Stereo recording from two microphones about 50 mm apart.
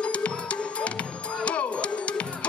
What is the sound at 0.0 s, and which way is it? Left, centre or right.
Music, left.